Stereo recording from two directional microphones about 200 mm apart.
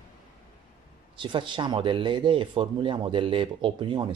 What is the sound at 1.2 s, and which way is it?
Speech, 25° right (ahead or behind).